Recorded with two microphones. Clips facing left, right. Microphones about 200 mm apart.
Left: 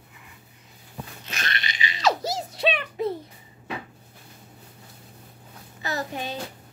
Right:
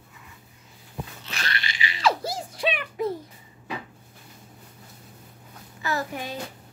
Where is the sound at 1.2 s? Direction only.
20° left (ahead or behind).